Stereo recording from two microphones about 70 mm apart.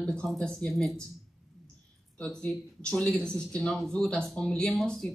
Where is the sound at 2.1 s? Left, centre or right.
Centre.